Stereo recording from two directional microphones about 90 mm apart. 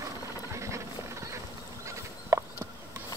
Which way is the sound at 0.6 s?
35° right (ahead or behind).